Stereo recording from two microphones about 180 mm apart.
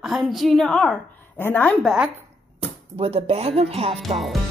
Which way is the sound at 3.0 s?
35° right (ahead or behind).